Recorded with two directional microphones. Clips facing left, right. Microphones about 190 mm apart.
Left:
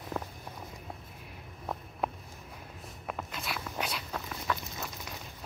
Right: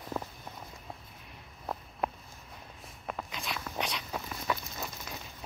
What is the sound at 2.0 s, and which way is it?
Walk, centre (ahead or behind).